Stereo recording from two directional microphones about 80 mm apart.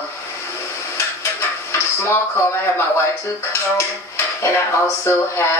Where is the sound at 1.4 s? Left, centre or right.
Left.